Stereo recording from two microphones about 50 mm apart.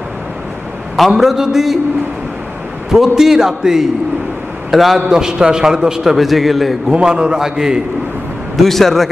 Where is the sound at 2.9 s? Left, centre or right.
Centre.